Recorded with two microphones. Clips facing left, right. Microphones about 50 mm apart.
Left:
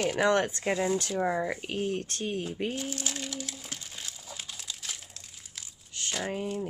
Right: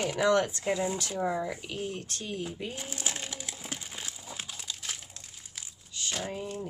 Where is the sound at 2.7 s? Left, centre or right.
Right.